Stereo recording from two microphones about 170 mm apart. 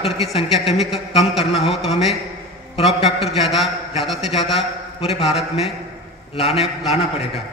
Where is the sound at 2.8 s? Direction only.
35° left (ahead or behind).